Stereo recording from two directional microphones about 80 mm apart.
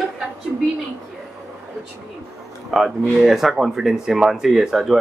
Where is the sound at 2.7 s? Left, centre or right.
Centre.